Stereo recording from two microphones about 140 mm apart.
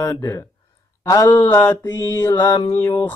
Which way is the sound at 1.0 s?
20° left (ahead or behind).